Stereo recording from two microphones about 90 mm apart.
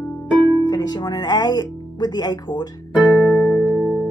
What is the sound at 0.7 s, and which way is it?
Speech, 50° left (ahead or behind).